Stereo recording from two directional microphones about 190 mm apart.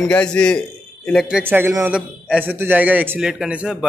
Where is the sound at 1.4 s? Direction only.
10° right (ahead or behind).